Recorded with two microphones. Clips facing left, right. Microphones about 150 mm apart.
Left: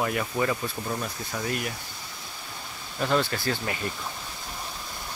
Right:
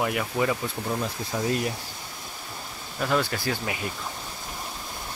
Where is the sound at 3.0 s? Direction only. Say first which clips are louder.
Even; 5° right (ahead or behind).